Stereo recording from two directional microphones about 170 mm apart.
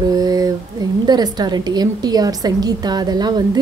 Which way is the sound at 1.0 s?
25° right (ahead or behind).